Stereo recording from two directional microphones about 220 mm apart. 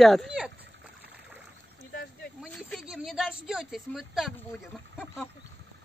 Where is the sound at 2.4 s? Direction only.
5° right (ahead or behind).